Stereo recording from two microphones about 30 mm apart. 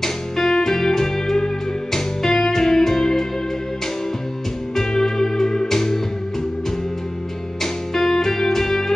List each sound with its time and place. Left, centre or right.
0.0 s music: centre
4.7 s music: centre
7.6 s music: centre